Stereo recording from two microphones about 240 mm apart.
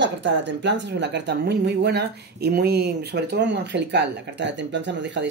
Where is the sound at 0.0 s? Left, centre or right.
Right.